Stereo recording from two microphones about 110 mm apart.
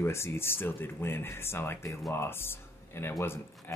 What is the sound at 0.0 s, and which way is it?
Speech, 25° left (ahead or behind).